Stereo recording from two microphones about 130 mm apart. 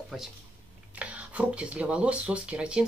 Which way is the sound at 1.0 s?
10° right (ahead or behind).